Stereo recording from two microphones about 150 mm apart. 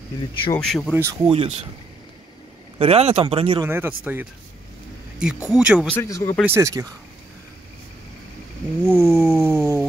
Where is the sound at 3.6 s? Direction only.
15° right (ahead or behind).